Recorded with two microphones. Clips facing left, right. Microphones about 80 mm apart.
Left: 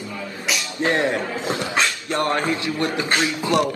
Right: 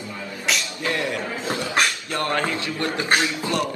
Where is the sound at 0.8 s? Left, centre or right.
Left.